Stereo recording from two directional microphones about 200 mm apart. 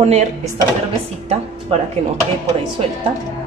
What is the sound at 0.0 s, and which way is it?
Speech, 35° right (ahead or behind).